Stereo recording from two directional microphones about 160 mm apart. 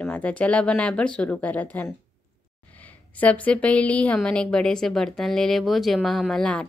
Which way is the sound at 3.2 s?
10° left (ahead or behind).